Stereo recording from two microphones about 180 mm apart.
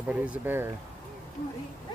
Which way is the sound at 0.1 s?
10° right (ahead or behind).